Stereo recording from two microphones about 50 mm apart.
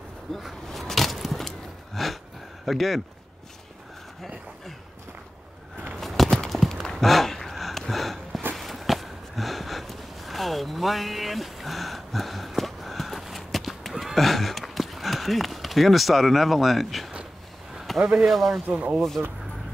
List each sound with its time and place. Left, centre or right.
0.3 s speech: centre
0.7 s keys jangling: centre
2.0 s speech: centre
5.9 s clip-clop: centre
6.7 s a sound: centre
17.8 s speech: centre
18.7 s speech: right
18.9 s speech: centre